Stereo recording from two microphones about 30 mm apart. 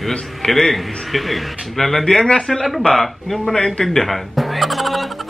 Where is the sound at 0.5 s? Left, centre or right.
Centre.